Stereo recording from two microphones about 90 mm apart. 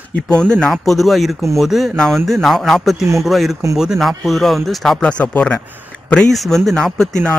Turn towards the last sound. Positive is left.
turn(degrees=5)  # may be behind; listen again after turning